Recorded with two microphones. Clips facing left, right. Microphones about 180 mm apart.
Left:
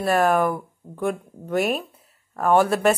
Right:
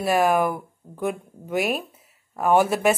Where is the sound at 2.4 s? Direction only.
15° right (ahead or behind).